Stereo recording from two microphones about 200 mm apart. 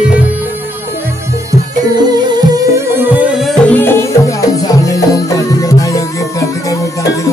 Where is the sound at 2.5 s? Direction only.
10° right (ahead or behind).